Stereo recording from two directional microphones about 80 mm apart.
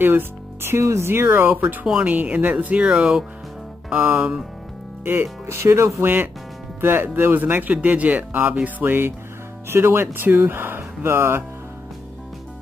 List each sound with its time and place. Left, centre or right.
0.0 s speech: right
5.5 s speech: right